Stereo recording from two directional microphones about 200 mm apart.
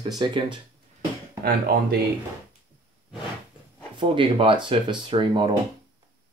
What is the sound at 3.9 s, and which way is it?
Speech, 25° right (ahead or behind).